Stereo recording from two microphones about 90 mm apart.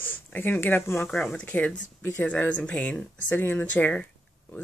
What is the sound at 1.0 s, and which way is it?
Speech, 5° left (ahead or behind).